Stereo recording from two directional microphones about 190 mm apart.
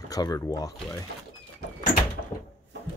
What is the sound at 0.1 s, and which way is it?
Speech, 20° left (ahead or behind).